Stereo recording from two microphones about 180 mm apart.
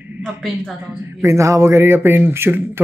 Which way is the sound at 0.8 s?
15° right (ahead or behind).